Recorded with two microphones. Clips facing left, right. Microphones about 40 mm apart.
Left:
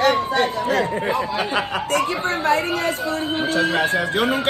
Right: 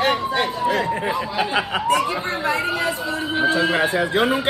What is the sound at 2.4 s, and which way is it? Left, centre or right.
Speech, left.